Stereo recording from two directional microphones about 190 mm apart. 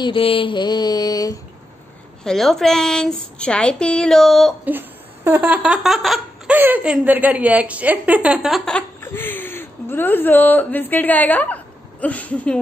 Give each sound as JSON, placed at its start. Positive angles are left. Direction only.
{"t": 0.0, "sound": "mantra", "side_deg": 30}
{"t": 2.2, "sound": "a woman's voice", "side_deg": 0}
{"t": 4.6, "sound": "laughter", "side_deg": -10}